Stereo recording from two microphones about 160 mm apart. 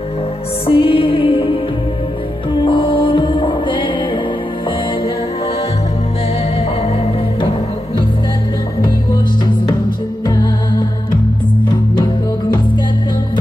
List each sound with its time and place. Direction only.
0.7 s music: 35° left (ahead or behind)
10.2 s music: 25° left (ahead or behind)
11.9 s music: 25° left (ahead or behind)